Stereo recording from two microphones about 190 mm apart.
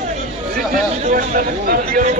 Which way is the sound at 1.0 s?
45° right (ahead or behind).